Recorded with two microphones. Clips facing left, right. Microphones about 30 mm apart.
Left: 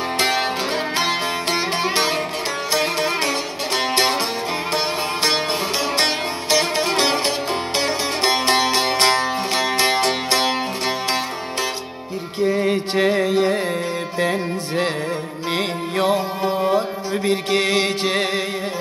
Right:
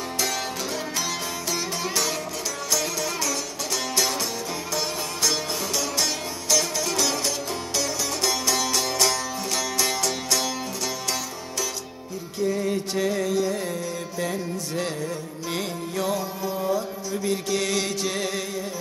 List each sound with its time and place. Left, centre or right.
0.2 s music: left
12.4 s music: left